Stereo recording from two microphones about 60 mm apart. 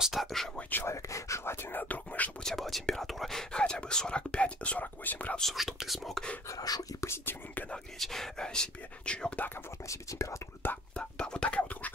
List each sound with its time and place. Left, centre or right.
0.0 s speech: centre
0.6 s speech: left
0.8 s speech: left
1.4 s speech: left
2.4 s speech: centre; by 5.3 s left
5.4 s speech: centre
6.5 s speech: left
7.1 s speech: left
8.0 s speech: centre
9.8 s speech: left
10.6 s speech: left
11.0 s speech: centre